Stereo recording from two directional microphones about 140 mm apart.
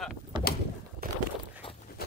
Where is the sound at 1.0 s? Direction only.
90° right.